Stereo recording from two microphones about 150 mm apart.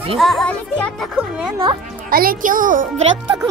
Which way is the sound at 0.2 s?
Centre (ahead or behind).